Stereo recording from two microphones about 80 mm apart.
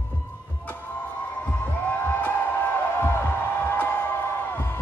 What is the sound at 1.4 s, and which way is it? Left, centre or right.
Music, left.